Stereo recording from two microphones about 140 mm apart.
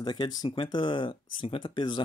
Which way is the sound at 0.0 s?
30° left (ahead or behind).